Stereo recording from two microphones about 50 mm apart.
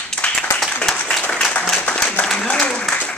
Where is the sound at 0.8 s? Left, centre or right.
Left.